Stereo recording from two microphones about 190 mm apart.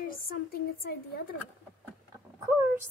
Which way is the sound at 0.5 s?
50° left (ahead or behind).